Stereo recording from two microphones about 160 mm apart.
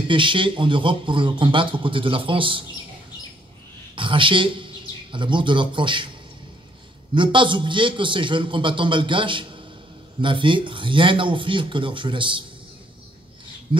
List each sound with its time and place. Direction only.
0.1 s a man's voice: 30° right (ahead or behind)
3.9 s speech: 30° right (ahead or behind)
7.2 s a man's voice: 30° right (ahead or behind)
13.7 s a man's voice: 35° right (ahead or behind)